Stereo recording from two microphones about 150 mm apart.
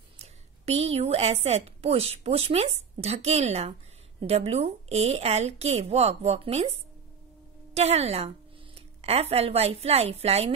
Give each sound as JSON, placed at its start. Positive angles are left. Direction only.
{"t": 0.2, "sound": "a woman's voice", "side_deg": -45}